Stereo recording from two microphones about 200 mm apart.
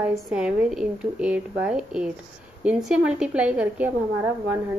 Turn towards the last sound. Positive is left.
turn(degrees=-10)  # may be behind; listen again after turning